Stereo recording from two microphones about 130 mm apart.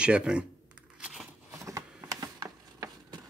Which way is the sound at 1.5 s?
25° right (ahead or behind).